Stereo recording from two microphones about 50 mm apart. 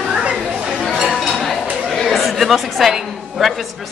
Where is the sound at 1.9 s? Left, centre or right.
Centre.